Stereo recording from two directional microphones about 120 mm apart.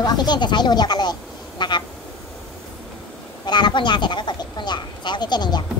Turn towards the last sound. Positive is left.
turn(degrees=35)  # may be behind; listen again after turning